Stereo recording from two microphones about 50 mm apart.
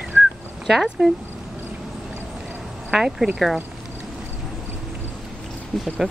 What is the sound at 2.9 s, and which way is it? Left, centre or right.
Speech, centre.